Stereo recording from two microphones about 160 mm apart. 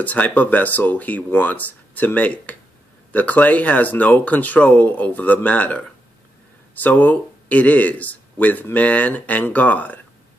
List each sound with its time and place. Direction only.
0.0 s speech: 10° left (ahead or behind)